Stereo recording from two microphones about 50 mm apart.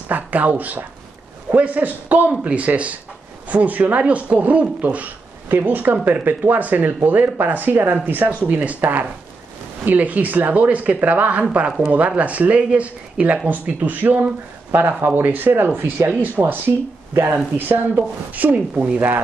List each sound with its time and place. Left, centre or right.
0.1 s speech: right